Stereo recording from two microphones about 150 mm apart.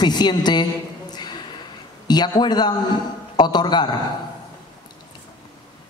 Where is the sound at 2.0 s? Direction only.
25° left (ahead or behind).